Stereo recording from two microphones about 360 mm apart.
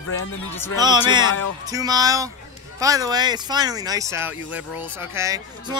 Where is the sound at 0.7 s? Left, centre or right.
Centre.